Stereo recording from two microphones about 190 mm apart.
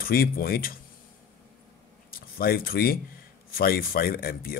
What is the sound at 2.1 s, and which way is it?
Speech, 50° left (ahead or behind).